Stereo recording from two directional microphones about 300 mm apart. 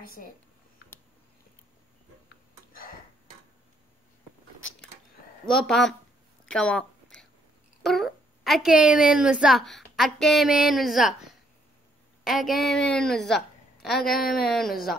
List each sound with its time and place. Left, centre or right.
0.0 s speech: left
2.7 s a sound: left
5.5 s a woman's voice: centre